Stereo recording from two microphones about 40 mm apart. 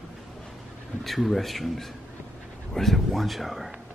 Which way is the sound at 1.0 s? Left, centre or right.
Centre.